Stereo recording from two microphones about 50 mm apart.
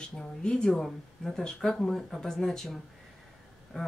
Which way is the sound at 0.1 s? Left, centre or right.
Centre.